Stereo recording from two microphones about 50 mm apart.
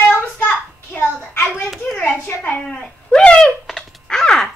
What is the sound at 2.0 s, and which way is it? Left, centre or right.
Hands, left.